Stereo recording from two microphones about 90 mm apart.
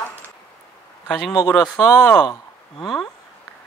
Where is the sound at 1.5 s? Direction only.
20° left (ahead or behind).